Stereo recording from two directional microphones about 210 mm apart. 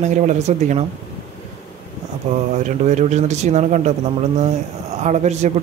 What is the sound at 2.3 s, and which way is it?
A man's voice, 35° right (ahead or behind).